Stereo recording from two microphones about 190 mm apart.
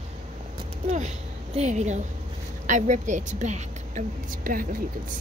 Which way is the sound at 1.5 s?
35° right (ahead or behind).